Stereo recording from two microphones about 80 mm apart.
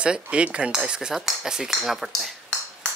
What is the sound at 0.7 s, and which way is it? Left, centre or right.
Cutlery, centre.